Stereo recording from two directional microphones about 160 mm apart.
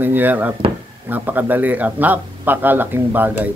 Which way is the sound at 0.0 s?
10° right (ahead or behind).